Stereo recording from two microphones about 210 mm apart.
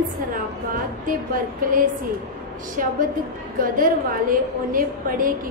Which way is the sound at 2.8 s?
40° right (ahead or behind).